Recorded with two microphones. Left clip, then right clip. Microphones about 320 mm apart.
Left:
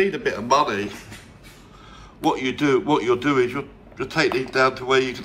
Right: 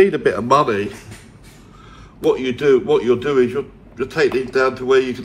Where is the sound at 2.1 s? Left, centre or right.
Centre.